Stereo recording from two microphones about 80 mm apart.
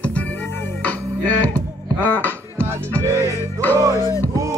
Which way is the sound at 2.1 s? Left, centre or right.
Left.